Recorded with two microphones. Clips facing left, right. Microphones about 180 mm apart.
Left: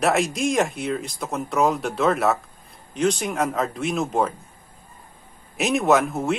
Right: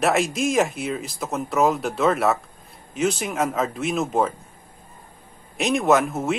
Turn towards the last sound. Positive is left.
turn(degrees=0)  # may be behind; listen again after turning